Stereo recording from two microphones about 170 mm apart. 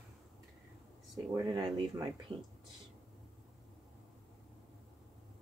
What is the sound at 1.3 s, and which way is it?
Speech, 25° right (ahead or behind).